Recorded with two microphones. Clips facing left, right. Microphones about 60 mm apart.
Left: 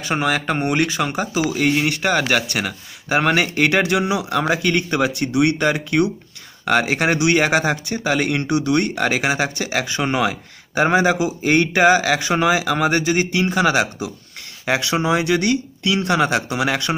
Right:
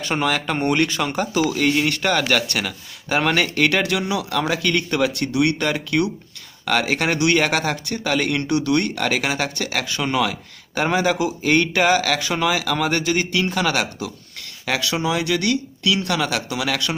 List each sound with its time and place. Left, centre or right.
0.0 s speech: centre; by 16.9 s left